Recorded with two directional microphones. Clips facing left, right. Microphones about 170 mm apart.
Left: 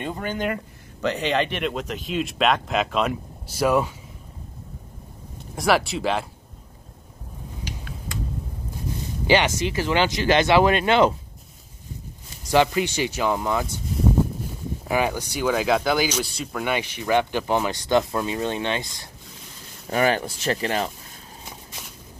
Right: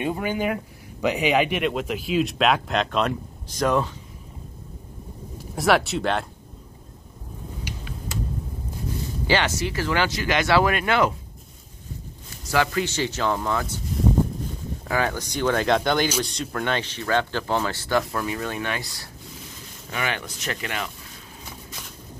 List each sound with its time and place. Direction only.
0.0 s speech: 10° right (ahead or behind); by 3.9 s 10° left (ahead or behind)
5.6 s speech: centre (ahead or behind)
9.3 s speech: 20° left (ahead or behind)
10.2 s speech: 30° left (ahead or behind)
12.4 s speech: 20° left (ahead or behind)
14.9 s speech: 15° left (ahead or behind)
19.9 s speech: 40° left (ahead or behind)